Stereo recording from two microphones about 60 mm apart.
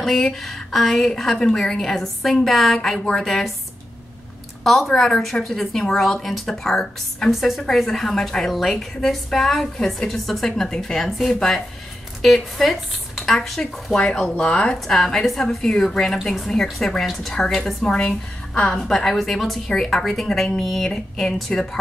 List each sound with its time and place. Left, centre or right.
0.0 s a woman's voice: centre
4.6 s a woman's voice: centre
14.9 s a woman's voice: centre
19.0 s a woman's voice: centre